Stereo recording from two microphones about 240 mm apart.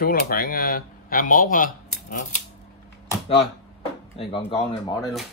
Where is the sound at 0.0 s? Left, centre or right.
Left.